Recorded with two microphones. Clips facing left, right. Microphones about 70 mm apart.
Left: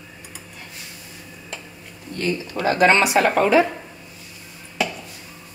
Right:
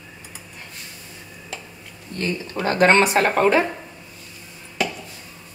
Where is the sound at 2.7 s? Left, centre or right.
Right.